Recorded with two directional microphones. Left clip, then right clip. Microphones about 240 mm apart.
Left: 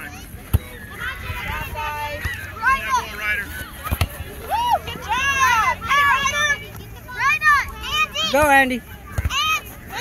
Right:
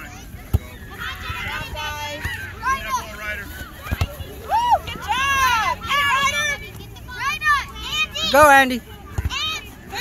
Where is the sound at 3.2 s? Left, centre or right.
Left.